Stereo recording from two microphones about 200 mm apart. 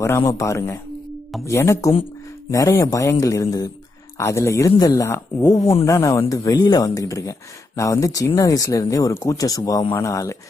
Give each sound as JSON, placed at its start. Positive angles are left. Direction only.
{"t": 0.0, "sound": "speech", "side_deg": 15}